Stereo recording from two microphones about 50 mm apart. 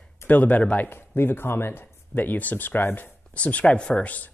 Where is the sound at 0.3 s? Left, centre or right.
Left.